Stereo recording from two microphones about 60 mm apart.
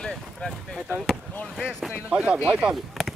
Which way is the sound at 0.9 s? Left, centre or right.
Centre.